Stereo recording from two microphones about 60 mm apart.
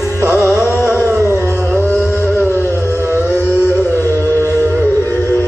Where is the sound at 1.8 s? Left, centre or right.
Left.